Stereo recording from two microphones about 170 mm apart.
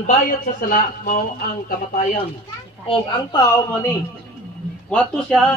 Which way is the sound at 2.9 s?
25° left (ahead or behind).